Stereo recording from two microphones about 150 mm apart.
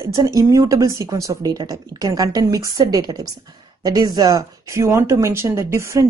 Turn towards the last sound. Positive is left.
turn(degrees=-20)  # may be behind; listen again after turning